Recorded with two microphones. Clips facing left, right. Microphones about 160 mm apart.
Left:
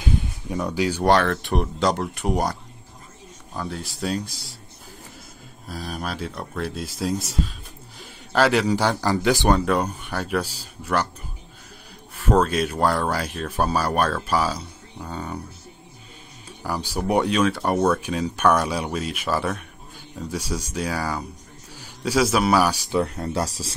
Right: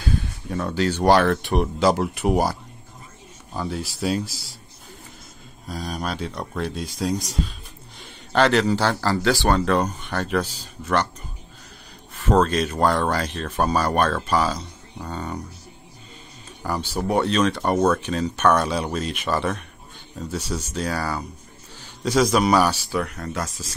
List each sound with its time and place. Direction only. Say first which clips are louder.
0.0 s a sound: left 1 dB; 20° left (ahead or behind)
1.0 s speech: right 2 dB; centre (ahead or behind)
3.5 s speech: right 3 dB; centre (ahead or behind)
5.7 s speech: right 2 dB; centre (ahead or behind)
12.2 s speech: right 1 dB; 10° left (ahead or behind)
16.6 s a man's voice: even; 10° left (ahead or behind)
22.9 s speech: left 3 dB; 25° left (ahead or behind)